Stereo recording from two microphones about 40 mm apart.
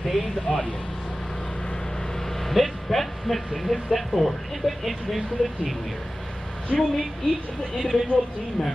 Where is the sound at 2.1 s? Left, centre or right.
Centre.